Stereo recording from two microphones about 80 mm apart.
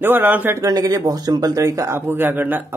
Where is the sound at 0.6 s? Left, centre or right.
Right.